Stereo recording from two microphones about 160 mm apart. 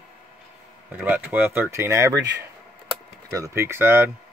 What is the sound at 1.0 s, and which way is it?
Speech, 10° right (ahead or behind).